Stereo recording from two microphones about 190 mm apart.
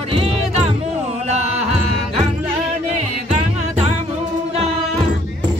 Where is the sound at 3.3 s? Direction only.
40° right (ahead or behind).